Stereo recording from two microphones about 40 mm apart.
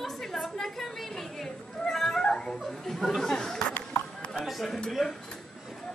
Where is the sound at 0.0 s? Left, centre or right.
Centre.